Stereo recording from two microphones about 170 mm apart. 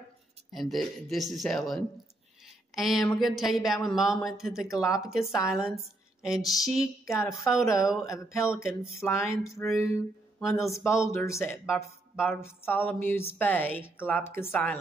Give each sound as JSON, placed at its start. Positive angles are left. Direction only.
{"t": 0.5, "sound": "speech", "side_deg": 0}
{"t": 7.1, "sound": "speech", "side_deg": 15}